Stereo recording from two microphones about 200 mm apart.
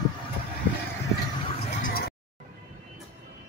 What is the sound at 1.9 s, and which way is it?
Music, 50° left (ahead or behind).